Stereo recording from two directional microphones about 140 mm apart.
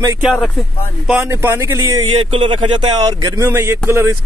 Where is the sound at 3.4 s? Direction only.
20° right (ahead or behind).